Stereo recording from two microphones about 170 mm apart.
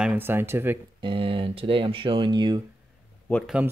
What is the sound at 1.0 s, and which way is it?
Speech, 30° right (ahead or behind).